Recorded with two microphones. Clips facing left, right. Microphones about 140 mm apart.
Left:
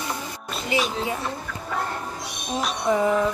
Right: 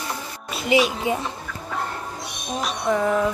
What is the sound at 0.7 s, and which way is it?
Speech, 15° right (ahead or behind).